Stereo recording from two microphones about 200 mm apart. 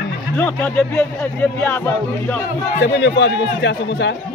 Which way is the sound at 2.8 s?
60° left (ahead or behind).